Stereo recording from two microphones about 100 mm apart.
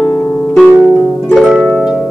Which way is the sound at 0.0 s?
20° left (ahead or behind).